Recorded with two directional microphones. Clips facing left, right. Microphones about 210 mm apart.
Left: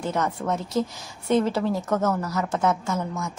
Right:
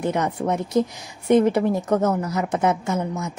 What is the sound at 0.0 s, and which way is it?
A woman's voice, 15° right (ahead or behind).